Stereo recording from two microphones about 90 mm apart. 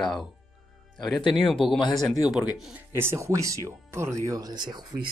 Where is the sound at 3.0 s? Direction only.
30° right (ahead or behind).